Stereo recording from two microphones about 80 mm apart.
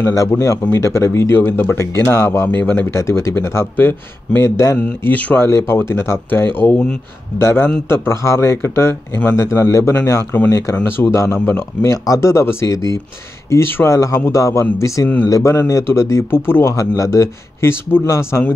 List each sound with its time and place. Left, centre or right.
0.0 s a man's voice: left
2.9 s speech: left
4.4 s speech: left
5.0 s speech: left
7.3 s a man's voice: left
16.7 s speech: left